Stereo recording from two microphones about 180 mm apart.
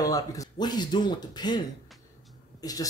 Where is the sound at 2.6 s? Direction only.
20° left (ahead or behind).